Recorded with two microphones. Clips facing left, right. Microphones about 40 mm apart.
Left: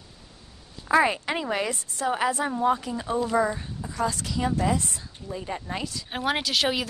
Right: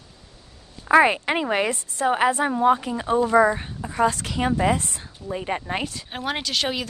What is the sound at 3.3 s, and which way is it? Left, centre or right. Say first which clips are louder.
A woman's voice: right 7 dB; right.